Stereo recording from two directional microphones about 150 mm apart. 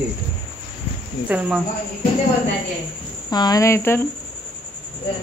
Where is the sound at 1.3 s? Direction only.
10° right (ahead or behind).